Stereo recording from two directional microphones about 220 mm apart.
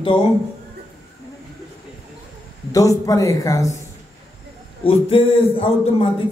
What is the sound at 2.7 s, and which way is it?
Speech, 15° left (ahead or behind).